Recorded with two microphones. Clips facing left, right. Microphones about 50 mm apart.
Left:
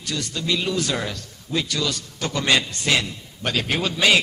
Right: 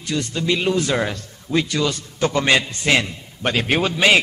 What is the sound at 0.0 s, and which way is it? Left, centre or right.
A man's voice, right.